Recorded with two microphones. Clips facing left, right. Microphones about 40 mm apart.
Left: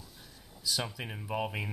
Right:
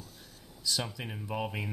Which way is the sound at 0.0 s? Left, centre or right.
Centre.